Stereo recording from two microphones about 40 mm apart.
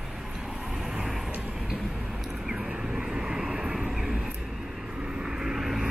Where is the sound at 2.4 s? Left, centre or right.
Centre.